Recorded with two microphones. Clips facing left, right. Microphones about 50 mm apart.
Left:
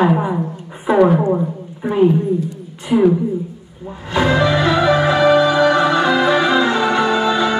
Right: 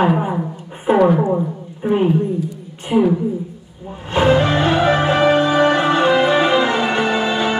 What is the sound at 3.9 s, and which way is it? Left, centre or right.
Music, right.